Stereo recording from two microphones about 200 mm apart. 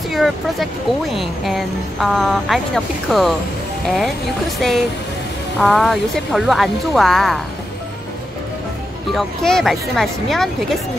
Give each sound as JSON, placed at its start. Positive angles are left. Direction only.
{"t": 0.1, "sound": "speech", "side_deg": 0}
{"t": 4.6, "sound": "speech", "side_deg": 0}
{"t": 9.1, "sound": "speech", "side_deg": 0}